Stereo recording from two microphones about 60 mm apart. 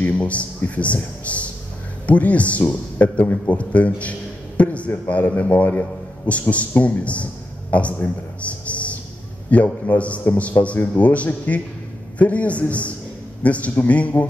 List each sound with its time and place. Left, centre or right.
0.0 s a man's voice: left
8.6 s a sound: left
9.5 s speech: left